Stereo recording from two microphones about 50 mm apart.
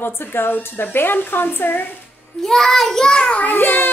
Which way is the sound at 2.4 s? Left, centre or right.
Centre.